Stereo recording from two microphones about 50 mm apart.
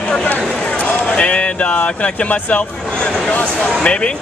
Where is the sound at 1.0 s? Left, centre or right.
Left.